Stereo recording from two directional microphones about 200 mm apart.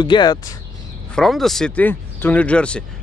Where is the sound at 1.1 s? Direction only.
Centre (ahead or behind).